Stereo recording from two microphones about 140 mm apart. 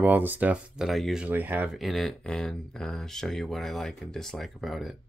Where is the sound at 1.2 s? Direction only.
15° right (ahead or behind).